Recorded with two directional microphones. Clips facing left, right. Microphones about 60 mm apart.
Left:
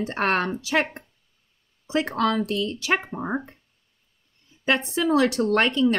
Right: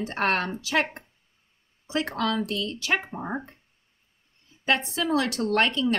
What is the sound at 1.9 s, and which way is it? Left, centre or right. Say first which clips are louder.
Speech: left 4 dB; centre.